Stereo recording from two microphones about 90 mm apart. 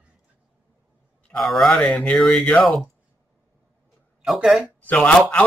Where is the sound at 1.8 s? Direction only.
10° left (ahead or behind).